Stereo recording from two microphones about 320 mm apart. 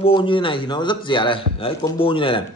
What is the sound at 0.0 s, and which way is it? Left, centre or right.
A man's voice, centre.